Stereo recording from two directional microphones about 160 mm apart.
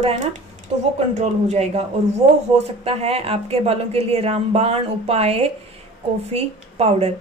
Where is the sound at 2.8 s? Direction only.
40° right (ahead or behind).